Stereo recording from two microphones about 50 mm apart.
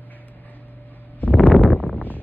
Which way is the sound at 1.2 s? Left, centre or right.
Left.